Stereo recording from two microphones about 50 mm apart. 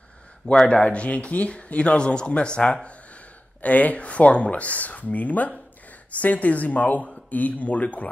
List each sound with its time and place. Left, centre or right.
0.7 s speech: left
3.6 s speech: left